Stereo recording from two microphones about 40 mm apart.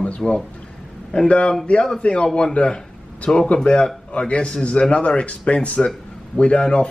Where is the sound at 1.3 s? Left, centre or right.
Left.